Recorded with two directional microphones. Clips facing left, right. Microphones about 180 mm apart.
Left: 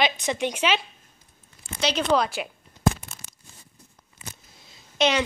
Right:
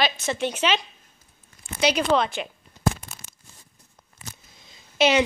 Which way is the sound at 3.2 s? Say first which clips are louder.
Left 1 dB; 30° left (ahead or behind).